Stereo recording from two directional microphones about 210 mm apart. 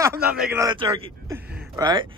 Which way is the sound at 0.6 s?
15° right (ahead or behind).